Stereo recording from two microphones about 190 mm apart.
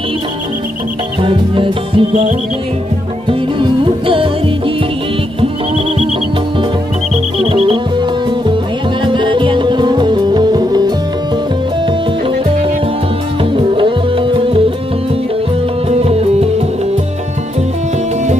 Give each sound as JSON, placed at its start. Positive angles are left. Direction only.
{"t": 1.2, "sound": "music", "side_deg": -25}
{"t": 3.3, "sound": "music", "side_deg": -25}
{"t": 7.3, "sound": "music", "side_deg": -25}
{"t": 9.0, "sound": "music", "side_deg": -25}
{"t": 13.4, "sound": "music", "side_deg": -25}
{"t": 15.9, "sound": "music", "side_deg": -30}